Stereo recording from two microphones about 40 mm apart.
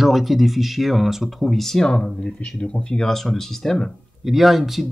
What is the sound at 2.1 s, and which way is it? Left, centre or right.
Speech, left.